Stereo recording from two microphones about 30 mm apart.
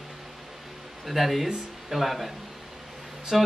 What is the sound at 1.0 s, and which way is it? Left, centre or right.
Speech, centre.